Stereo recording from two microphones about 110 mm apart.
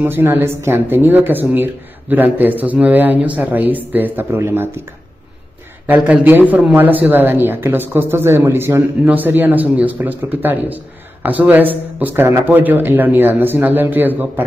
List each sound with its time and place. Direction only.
0.0 s speech: 20° right (ahead or behind)
5.9 s speech: 15° right (ahead or behind)